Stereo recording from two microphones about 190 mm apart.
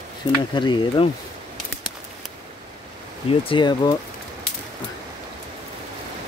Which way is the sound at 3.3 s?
30° left (ahead or behind).